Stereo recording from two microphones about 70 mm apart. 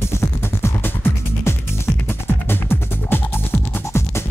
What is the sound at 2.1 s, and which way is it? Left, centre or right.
Music, left.